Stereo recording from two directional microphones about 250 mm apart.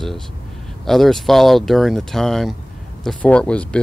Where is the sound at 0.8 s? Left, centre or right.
Centre.